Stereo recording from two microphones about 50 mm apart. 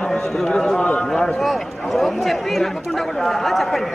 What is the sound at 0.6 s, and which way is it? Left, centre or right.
Speech, centre.